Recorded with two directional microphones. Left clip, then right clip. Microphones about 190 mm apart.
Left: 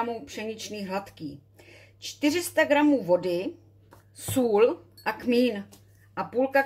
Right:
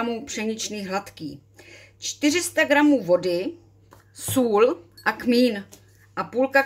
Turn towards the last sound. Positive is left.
turn(degrees=-10)  # may be behind; listen again after turning